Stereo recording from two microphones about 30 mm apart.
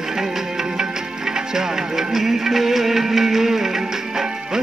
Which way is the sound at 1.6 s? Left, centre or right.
Centre.